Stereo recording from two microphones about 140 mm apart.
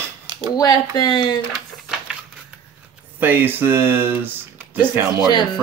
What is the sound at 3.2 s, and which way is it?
Speech, 15° right (ahead or behind).